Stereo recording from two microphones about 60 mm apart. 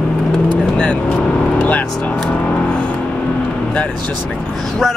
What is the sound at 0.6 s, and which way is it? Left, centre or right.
Vehicle, centre.